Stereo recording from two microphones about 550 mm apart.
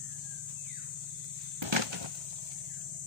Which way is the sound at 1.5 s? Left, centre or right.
Right.